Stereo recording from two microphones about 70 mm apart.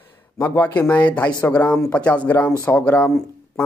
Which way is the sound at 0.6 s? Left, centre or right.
Left.